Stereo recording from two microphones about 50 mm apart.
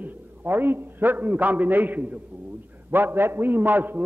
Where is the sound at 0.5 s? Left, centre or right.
Right.